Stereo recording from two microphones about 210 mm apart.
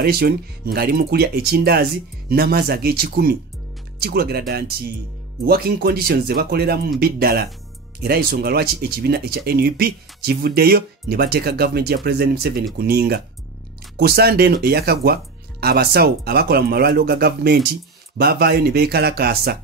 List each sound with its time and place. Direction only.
0.0 s speech: 45° right (ahead or behind)